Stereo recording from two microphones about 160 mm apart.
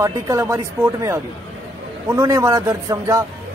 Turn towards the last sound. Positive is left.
turn(degrees=-20)  # may be behind; listen again after turning